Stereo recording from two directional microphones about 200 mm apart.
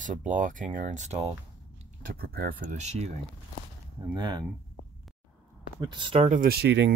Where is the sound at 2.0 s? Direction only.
50° right (ahead or behind).